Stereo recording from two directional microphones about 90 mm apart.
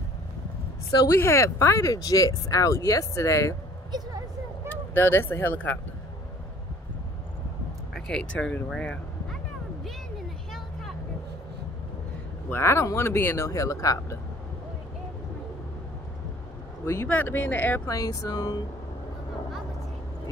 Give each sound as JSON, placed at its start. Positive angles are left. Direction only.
{"t": 1.2, "sound": "speech", "side_deg": 30}
{"t": 3.9, "sound": "a sound", "side_deg": -50}
{"t": 4.6, "sound": "speech", "side_deg": 25}
{"t": 8.1, "sound": "speech", "side_deg": 10}
{"t": 8.6, "sound": "a sound", "side_deg": 5}
{"t": 12.4, "sound": "speech", "side_deg": 30}
{"t": 16.8, "sound": "speech", "side_deg": 30}
{"t": 17.8, "sound": "speech", "side_deg": 40}